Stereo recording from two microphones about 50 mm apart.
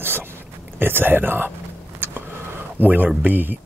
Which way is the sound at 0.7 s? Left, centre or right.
Right.